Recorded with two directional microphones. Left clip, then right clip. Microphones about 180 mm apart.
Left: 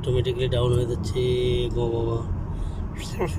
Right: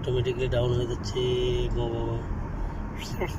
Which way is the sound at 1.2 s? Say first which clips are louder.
Left 3 dB; 65° left (ahead or behind).